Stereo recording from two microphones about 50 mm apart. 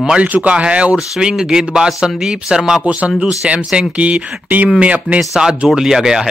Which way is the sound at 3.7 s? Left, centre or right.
Right.